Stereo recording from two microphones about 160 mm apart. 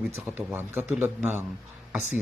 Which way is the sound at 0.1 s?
15° right (ahead or behind).